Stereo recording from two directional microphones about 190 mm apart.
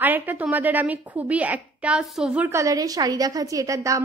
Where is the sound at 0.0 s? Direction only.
10° right (ahead or behind).